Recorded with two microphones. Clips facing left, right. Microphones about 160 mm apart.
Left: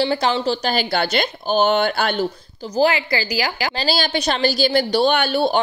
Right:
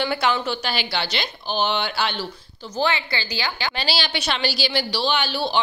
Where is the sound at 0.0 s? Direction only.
35° left (ahead or behind); by 2.2 s 50° left (ahead or behind).